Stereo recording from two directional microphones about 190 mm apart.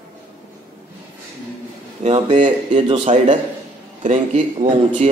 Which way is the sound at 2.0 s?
30° right (ahead or behind).